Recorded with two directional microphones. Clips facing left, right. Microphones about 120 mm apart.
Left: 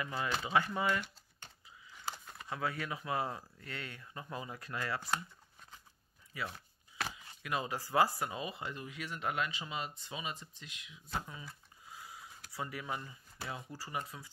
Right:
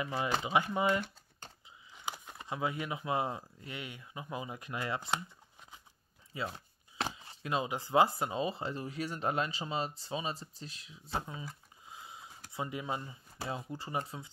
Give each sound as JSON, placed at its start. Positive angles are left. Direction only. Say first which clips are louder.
{"t": 0.0, "sound": "speech", "louder": "right 3 dB", "side_deg": -20}
{"t": 6.3, "sound": "chopping", "louder": "right 3 dB", "side_deg": -25}
{"t": 11.9, "sound": "a sound", "louder": "right 1 dB", "side_deg": -20}
{"t": 13.5, "sound": "speech", "louder": "right 5 dB", "side_deg": -25}